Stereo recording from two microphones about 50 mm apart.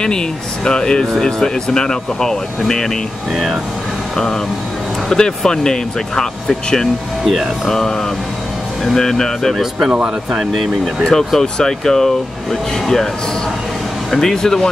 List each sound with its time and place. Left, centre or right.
0.7 s speech: centre
5.1 s speech: centre
7.2 s speech: centre
8.8 s speech: centre
9.6 s speech: centre
11.1 s speech: centre
14.1 s speech: centre